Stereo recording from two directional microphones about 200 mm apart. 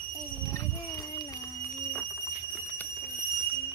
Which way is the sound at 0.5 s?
20° left (ahead or behind).